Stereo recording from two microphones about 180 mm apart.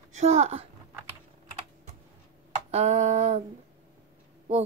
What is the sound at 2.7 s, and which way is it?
Speech, 40° right (ahead or behind).